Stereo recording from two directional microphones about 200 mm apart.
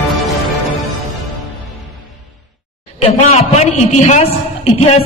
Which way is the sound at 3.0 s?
30° left (ahead or behind).